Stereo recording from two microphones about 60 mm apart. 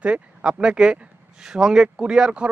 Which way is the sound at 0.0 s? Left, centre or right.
Centre.